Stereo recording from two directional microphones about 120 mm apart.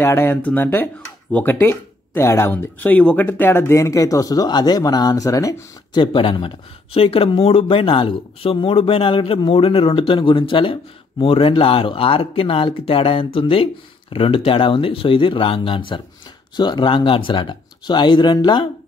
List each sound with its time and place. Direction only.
0.0 s speech: 20° left (ahead or behind)
6.1 s speech: 45° left (ahead or behind)